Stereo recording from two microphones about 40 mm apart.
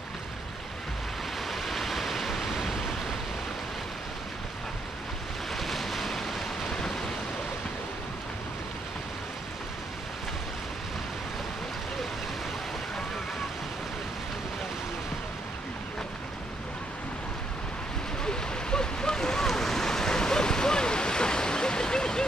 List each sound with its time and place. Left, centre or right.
1.5 s waves: centre
5.5 s waves: centre
18.2 s waves: centre